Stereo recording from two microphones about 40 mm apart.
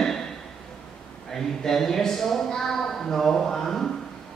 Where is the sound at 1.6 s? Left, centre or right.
Centre.